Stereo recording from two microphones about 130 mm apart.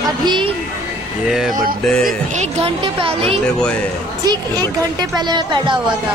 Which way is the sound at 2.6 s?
45° right (ahead or behind).